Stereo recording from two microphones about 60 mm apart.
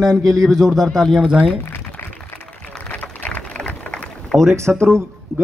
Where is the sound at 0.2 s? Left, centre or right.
Right.